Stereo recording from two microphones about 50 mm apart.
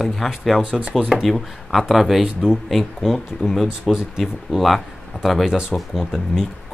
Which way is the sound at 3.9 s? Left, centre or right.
Centre.